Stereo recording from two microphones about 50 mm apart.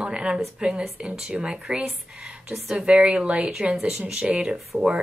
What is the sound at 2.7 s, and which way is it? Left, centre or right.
Speech, centre.